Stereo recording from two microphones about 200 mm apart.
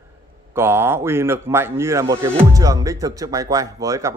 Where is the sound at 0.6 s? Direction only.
10° right (ahead or behind).